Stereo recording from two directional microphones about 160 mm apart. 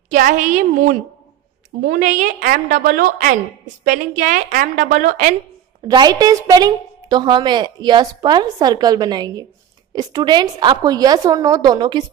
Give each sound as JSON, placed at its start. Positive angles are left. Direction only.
{"t": 0.1, "sound": "a woman's voice", "side_deg": -50}
{"t": 5.8, "sound": "a woman's voice", "side_deg": -25}